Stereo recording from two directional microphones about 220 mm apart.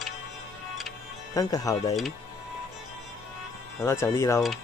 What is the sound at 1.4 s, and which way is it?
Speech, 15° left (ahead or behind).